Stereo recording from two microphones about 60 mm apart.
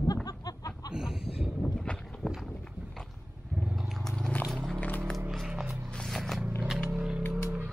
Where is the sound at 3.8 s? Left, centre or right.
Centre.